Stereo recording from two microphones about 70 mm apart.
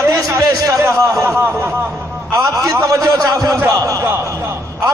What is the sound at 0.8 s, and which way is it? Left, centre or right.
Speech, right.